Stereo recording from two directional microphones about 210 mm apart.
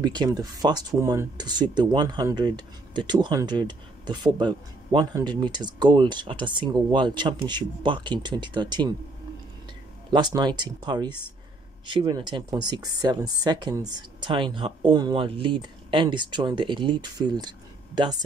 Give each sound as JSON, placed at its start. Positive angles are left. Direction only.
{"t": 0.0, "sound": "speech", "side_deg": -20}
{"t": 10.1, "sound": "speech", "side_deg": -20}